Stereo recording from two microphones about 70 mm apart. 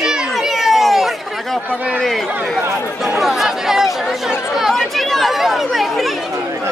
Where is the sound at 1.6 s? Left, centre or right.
Centre.